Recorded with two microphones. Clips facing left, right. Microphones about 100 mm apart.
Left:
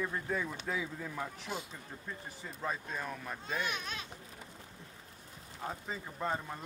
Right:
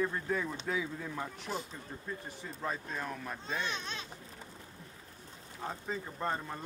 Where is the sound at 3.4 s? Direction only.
30° right (ahead or behind).